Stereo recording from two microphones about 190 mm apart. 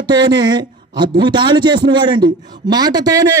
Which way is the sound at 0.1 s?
20° right (ahead or behind).